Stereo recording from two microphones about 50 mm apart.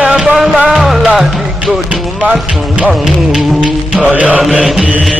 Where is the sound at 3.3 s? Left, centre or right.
Centre.